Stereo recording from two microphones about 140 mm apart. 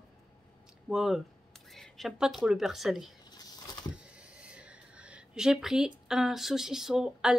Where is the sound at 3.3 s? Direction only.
30° left (ahead or behind).